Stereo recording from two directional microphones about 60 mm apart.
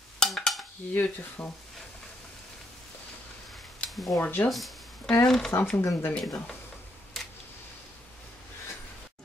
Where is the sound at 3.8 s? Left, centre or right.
Centre.